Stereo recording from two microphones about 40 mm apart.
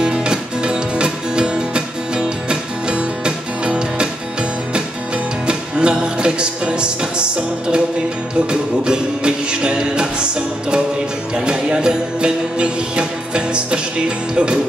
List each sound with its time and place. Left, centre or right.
0.0 s music: right